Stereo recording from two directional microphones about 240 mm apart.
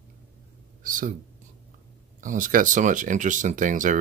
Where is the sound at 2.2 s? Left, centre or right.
Right.